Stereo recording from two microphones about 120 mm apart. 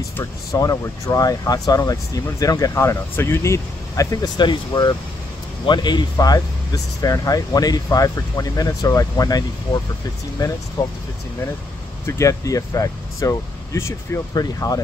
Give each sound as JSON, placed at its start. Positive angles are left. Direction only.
{"t": 0.2, "sound": "speech", "side_deg": 30}
{"t": 10.8, "sound": "speech", "side_deg": 40}
{"t": 12.1, "sound": "speech", "side_deg": 25}